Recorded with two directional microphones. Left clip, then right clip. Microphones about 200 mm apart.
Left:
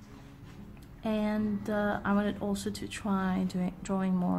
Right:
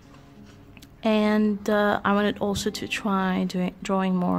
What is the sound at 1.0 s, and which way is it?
Speech, 45° right (ahead or behind).